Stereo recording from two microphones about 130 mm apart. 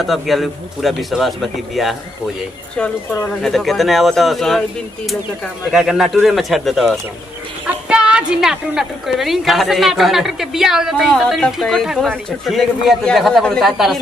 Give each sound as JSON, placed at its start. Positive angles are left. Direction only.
{"t": 0.0, "sound": "a woman's voice", "side_deg": 0}
{"t": 5.7, "sound": "a woman's voice", "side_deg": -5}